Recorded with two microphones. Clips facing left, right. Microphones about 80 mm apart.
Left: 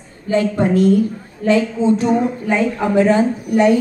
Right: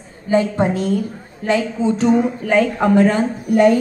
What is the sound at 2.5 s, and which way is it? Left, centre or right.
A woman's voice, right.